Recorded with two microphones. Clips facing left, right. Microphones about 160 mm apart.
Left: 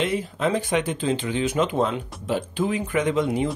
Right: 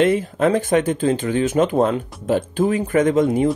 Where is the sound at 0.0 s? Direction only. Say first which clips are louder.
Right 7 dB; 50° right (ahead or behind).